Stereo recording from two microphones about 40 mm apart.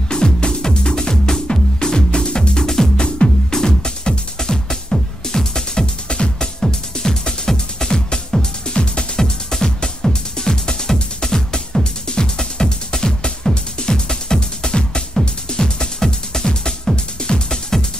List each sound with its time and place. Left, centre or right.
0.1 s music: left